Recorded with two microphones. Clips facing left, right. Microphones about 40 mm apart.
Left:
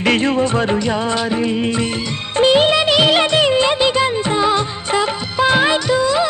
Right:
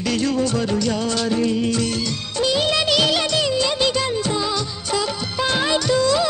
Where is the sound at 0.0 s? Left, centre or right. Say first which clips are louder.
Left 5 dB; left.